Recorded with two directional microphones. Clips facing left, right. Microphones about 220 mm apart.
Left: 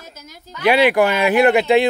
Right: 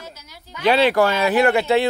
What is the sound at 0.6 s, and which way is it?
Speech, 10° left (ahead or behind).